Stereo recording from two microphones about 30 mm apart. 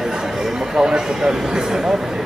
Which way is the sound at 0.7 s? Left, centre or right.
Right.